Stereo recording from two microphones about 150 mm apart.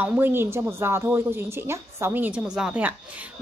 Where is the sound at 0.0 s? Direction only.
10° right (ahead or behind).